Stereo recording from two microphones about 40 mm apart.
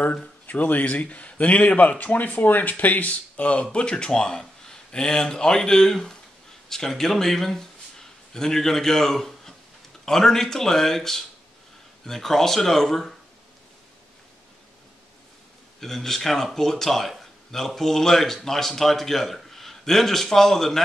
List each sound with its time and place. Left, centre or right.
0.5 s speech: left
3.7 s speech: left; by 13.1 s centre
15.8 s speech: centre